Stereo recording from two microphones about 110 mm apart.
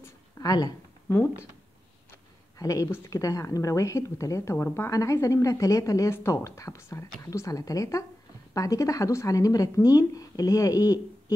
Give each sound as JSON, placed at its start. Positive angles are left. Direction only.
{"t": 0.4, "sound": "speech", "side_deg": 35}
{"t": 2.6, "sound": "a woman's voice", "side_deg": 30}